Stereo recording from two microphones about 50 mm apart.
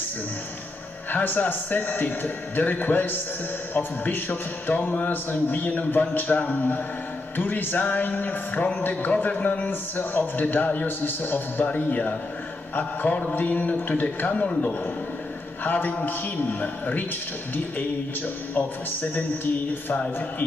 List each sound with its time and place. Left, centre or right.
1.1 s a man's voice: left
14.0 s speech: left
15.6 s a man's voice: left
18.5 s a man's voice: left